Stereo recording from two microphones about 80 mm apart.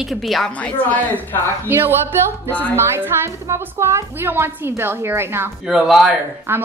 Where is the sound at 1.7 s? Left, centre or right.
Right.